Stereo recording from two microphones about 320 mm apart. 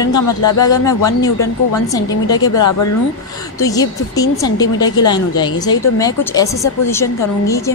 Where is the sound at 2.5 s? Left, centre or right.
Left.